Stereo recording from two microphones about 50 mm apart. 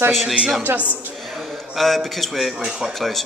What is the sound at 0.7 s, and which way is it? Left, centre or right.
Speech, right.